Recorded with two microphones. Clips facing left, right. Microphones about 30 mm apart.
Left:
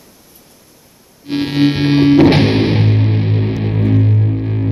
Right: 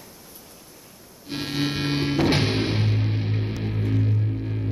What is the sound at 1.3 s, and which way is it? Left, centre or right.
Music, left.